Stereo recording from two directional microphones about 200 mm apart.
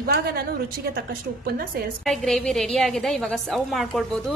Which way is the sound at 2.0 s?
Centre (ahead or behind).